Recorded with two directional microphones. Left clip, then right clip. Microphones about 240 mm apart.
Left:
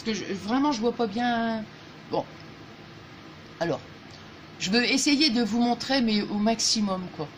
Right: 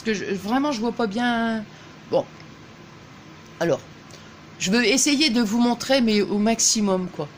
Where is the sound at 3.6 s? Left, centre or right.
Right.